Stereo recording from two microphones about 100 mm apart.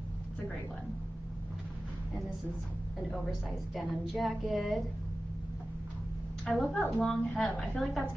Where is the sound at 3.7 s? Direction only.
Centre (ahead or behind).